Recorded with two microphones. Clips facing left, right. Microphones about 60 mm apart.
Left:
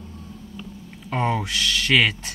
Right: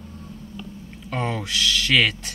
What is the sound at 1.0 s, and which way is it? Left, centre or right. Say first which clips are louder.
Speech: left 3 dB; centre.